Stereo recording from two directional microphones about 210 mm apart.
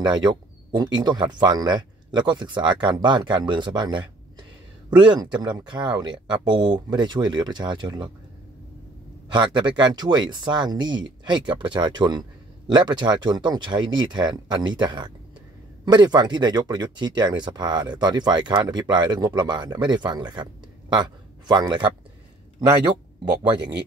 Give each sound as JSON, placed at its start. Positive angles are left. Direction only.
{"t": 0.0, "sound": "speech", "side_deg": -20}
{"t": 9.3, "sound": "a man's voice", "side_deg": -20}
{"t": 23.6, "sound": "speech", "side_deg": -55}